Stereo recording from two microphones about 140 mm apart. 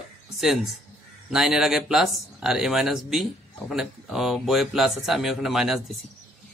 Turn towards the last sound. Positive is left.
turn(degrees=-5)  # may be behind; listen again after turning